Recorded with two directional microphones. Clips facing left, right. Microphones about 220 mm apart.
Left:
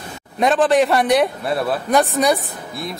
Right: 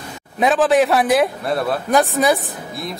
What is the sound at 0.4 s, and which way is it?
A man's voice, centre (ahead or behind).